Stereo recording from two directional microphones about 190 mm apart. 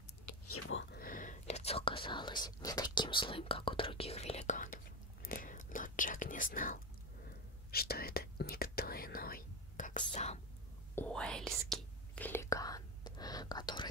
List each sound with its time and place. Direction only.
0.9 s whispering: 45° left (ahead or behind)
11.0 s whispering: 5° left (ahead or behind); by 13.8 s 20° left (ahead or behind)